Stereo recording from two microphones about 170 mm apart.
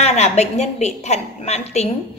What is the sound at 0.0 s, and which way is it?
A woman's voice, 40° left (ahead or behind).